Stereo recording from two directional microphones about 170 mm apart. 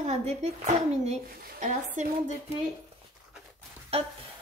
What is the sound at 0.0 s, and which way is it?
A woman's voice, 40° right (ahead or behind).